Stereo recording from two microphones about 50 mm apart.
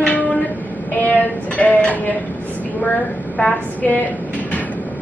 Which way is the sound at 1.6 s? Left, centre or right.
Left.